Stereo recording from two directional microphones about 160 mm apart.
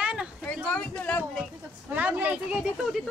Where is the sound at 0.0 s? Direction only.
5° right (ahead or behind).